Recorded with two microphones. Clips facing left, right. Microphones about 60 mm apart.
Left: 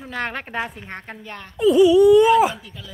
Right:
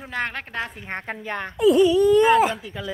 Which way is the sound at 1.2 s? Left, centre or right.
Right.